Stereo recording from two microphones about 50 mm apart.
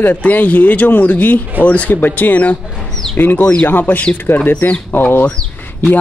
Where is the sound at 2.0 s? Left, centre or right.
Left.